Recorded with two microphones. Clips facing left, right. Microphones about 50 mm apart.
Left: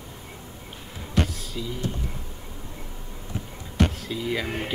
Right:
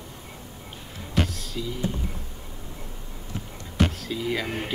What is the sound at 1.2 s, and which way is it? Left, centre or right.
Music, centre.